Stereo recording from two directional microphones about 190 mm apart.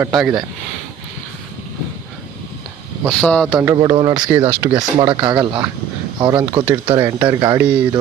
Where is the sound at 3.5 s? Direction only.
20° right (ahead or behind).